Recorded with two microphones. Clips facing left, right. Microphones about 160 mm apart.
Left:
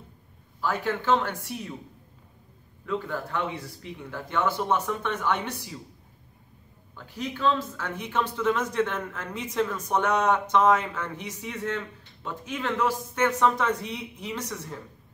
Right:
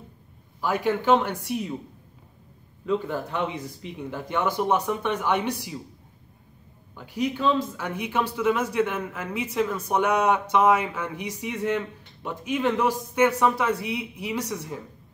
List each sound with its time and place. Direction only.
0.6 s speech: 15° right (ahead or behind)
2.8 s speech: 20° right (ahead or behind)
7.0 s speech: 15° right (ahead or behind)